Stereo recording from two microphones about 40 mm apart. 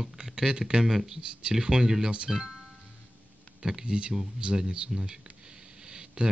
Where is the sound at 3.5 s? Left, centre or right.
Centre.